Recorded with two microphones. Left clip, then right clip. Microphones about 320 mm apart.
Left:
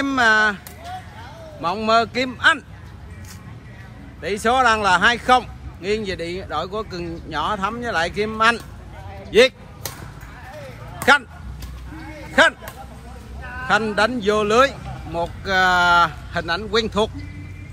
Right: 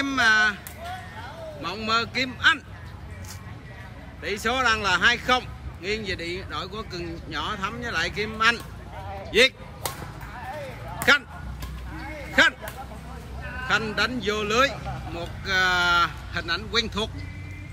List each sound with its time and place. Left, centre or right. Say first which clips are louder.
0.0 s speech: left 4 dB; centre
1.6 s a man's voice: left 8 dB; centre
4.2 s a man's voice: left 7 dB; centre
9.8 s a sound: right 1 dB; centre
11.0 s a sound: left 5 dB; centre
12.4 s a man's voice: left 4 dB; centre